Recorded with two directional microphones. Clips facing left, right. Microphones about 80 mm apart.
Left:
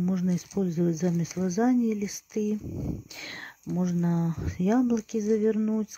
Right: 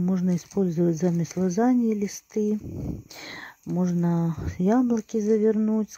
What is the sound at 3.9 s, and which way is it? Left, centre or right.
Speech, right.